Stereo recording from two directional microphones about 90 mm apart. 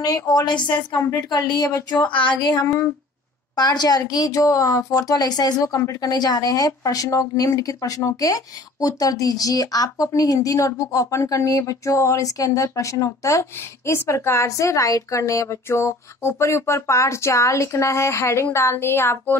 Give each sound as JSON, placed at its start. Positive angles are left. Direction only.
{"t": 0.0, "sound": "a woman's voice", "side_deg": 45}
{"t": 2.0, "sound": "a sound", "side_deg": 65}
{"t": 3.5, "sound": "speech", "side_deg": 50}